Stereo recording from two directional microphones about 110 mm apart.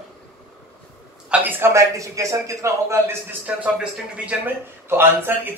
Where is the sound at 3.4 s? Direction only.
10° right (ahead or behind).